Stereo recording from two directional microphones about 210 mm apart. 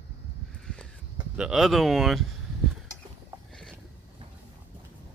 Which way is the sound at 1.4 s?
Centre (ahead or behind).